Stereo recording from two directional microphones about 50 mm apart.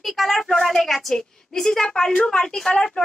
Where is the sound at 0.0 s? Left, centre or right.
Centre.